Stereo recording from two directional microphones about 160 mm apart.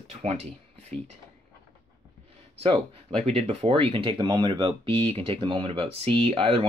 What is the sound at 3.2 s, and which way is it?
Speech, 40° right (ahead or behind).